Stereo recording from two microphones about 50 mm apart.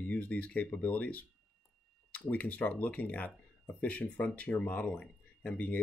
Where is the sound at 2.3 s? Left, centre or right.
Left.